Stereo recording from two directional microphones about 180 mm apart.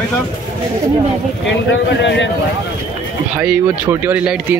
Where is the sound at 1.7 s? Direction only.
85° left.